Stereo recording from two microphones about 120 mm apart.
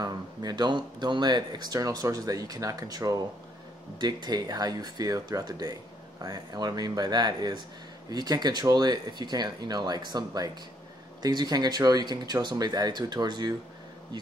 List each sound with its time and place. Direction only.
0.0 s speech: 35° right (ahead or behind)